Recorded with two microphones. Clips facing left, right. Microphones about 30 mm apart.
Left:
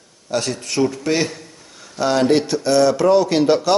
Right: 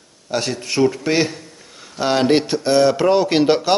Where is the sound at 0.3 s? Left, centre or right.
Centre.